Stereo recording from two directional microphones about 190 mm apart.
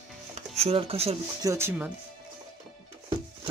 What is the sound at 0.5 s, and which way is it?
Speech, 30° right (ahead or behind).